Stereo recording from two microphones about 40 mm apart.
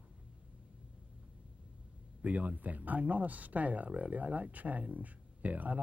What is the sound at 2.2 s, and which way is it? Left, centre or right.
Speech, right.